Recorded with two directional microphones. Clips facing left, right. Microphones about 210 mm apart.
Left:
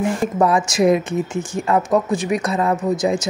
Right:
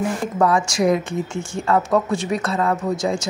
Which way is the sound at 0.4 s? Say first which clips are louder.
Left 1 dB; 20° left (ahead or behind).